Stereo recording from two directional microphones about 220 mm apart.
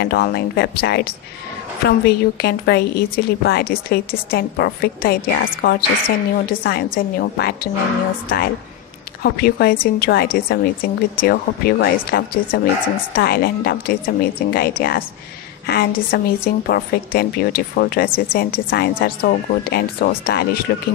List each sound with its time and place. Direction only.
0.0 s a woman's voice: 45° left (ahead or behind)